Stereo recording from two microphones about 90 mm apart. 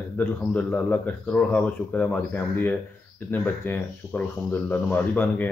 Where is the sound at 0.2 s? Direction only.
15° left (ahead or behind).